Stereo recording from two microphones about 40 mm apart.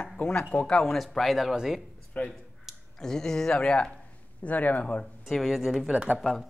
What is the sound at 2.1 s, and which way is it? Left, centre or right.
Speech, left.